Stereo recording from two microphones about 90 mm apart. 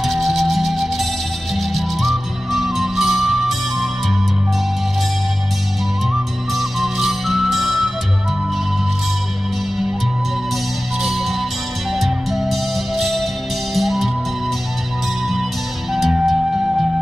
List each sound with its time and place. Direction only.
0.0 s music: centre (ahead or behind)
6.5 s music: centre (ahead or behind)
11.0 s music: centre (ahead or behind)
15.9 s music: centre (ahead or behind)